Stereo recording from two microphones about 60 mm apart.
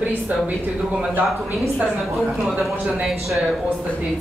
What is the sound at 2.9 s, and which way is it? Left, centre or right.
Speech, centre.